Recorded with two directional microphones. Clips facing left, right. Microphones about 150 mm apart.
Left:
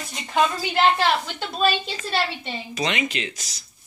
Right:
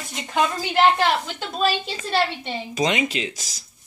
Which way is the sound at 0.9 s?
15° right (ahead or behind).